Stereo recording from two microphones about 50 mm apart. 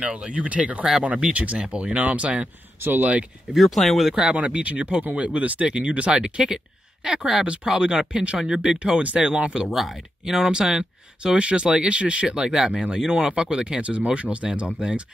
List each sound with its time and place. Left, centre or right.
0.0 s speech: right
2.8 s speech: right
3.5 s speech: centre
4.1 s speech: centre
4.5 s speech: right
9.0 s speech: right
9.5 s speech: centre